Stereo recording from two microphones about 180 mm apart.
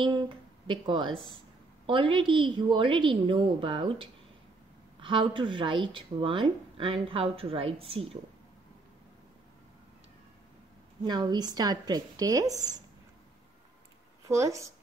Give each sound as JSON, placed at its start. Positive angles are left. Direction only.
{"t": 0.0, "sound": "speech", "side_deg": -25}
{"t": 11.1, "sound": "speech", "side_deg": -25}
{"t": 14.2, "sound": "speech", "side_deg": -15}